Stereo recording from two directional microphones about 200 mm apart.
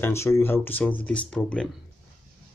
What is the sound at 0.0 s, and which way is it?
Speech, 15° left (ahead or behind).